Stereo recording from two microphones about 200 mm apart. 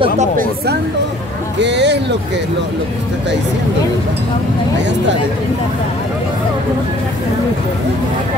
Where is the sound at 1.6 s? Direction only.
60° right (ahead or behind).